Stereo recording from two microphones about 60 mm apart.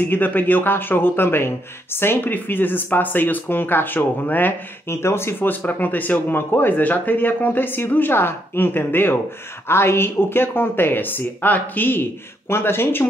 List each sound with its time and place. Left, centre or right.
0.0 s speech: left
4.8 s speech: left
5.5 s speech: left